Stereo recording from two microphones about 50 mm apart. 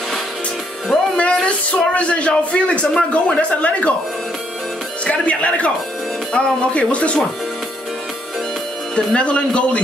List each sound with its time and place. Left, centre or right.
1.1 s speech: left
5.0 s speech: left
8.9 s speech: left